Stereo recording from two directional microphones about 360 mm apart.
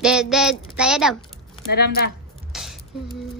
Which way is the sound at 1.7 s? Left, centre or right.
Left.